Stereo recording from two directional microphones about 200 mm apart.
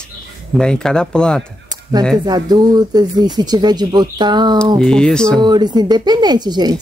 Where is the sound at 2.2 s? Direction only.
20° right (ahead or behind).